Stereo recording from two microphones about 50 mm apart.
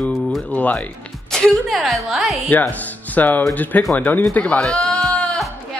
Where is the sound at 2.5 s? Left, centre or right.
Left.